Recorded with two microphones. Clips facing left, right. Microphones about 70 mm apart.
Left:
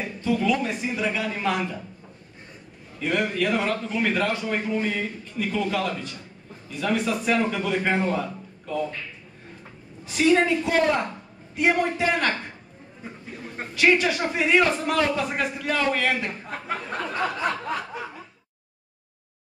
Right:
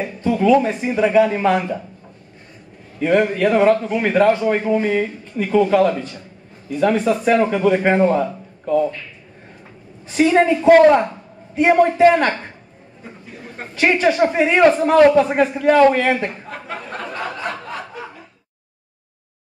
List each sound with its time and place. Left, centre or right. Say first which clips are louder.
0.2 s a man's voice: right 9 dB; right
3.0 s a man's voice: right 9 dB; right
10.0 s a man's voice: right 5 dB; right
13.7 s a man's voice: right 5 dB; right
16.9 s a sound: even; centre